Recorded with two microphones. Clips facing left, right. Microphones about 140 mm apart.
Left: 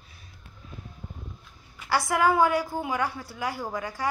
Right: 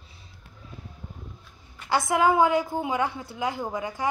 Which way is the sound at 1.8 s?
20° right (ahead or behind).